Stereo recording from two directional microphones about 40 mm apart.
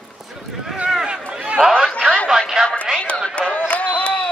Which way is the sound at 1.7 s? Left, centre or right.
Left.